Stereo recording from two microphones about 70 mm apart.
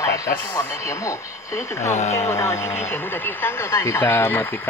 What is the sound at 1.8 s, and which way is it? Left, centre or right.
Speech, left.